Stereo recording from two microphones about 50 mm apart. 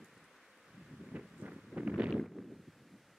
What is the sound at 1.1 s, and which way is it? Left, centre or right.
Wind, right.